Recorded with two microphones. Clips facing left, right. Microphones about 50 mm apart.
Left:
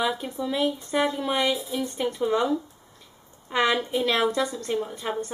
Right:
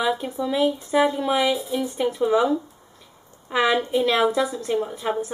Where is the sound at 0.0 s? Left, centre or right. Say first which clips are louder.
Right 3 dB; centre.